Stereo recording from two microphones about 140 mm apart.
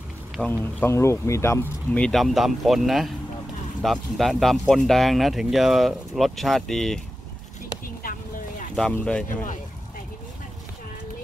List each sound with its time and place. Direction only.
0.4 s speech: 10° left (ahead or behind)
8.7 s speech: 5° left (ahead or behind)